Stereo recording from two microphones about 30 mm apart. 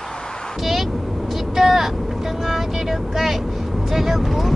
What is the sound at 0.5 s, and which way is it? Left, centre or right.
Vehicle, centre.